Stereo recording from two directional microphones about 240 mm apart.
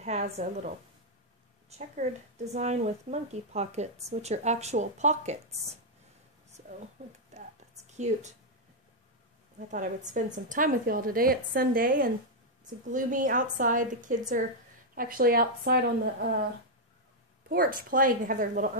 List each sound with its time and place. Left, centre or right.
0.0 s a woman's voice: right
1.7 s speech: right
6.5 s a sound: right
7.9 s speech: right
9.6 s a woman's voice: right
17.5 s a woman's voice: right